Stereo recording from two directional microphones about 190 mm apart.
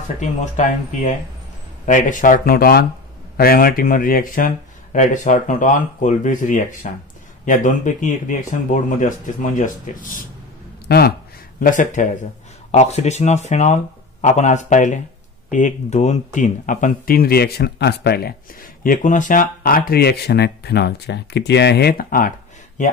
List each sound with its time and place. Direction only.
0.2 s speech: 40° left (ahead or behind)
10.9 s speech: 55° left (ahead or behind)
11.6 s speech: 45° left (ahead or behind)